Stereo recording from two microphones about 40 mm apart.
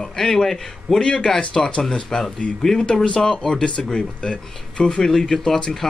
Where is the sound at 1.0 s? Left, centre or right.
Left.